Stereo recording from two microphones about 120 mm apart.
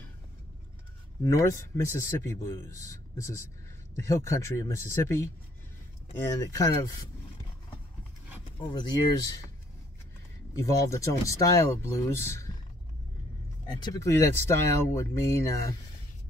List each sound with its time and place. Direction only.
1.2 s a man's voice: 25° left (ahead or behind)
10.5 s a man's voice: 25° left (ahead or behind)
13.7 s speech: 40° left (ahead or behind)
14.0 s a man's voice: 25° left (ahead or behind)